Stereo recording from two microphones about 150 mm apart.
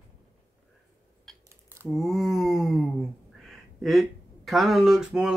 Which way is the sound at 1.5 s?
15° right (ahead or behind).